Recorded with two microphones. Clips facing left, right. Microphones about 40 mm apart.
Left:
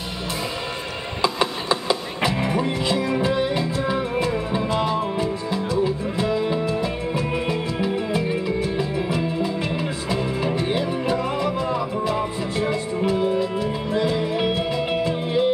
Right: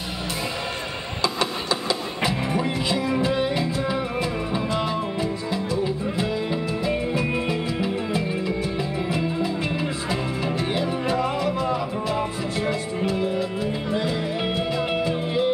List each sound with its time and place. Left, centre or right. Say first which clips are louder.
1.2 s a sound: left 3 dB; centre
2.2 s music: left 2 dB; centre
3.3 s music: left 1 dB; centre
8.7 s music: left 2 dB; centre
11.4 s music: left 1 dB; centre
13.6 s music: left 2 dB; centre